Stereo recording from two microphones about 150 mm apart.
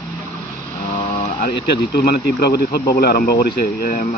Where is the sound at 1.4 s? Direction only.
90° left.